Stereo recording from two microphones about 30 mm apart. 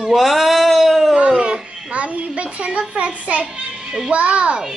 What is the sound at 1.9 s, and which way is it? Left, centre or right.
A child's voice, right.